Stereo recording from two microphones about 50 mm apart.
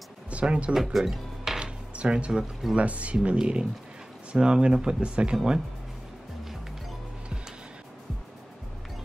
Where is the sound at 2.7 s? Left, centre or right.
Right.